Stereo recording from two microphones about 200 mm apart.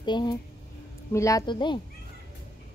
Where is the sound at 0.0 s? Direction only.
20° left (ahead or behind).